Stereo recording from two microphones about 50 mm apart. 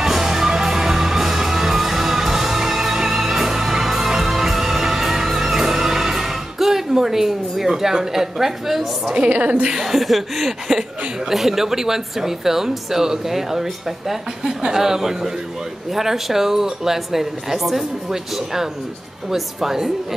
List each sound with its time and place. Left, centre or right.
0.0 s music: centre
9.1 s a woman's voice: right
9.8 s speech: centre